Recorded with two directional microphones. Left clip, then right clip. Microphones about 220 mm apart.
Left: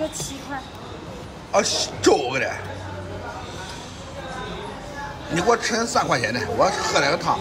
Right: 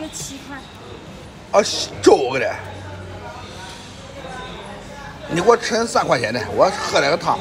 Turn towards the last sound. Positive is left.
turn(degrees=5)  # may be behind; listen again after turning